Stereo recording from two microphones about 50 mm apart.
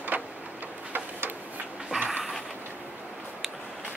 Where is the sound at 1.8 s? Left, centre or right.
Right.